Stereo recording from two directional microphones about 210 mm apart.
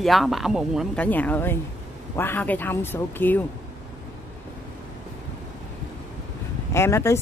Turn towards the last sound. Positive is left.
turn(degrees=15)  # may be behind; listen again after turning